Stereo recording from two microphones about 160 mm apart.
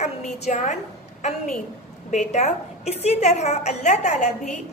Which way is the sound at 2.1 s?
45° left (ahead or behind).